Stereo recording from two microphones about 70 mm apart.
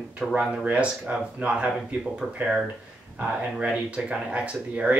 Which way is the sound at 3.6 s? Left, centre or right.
Centre.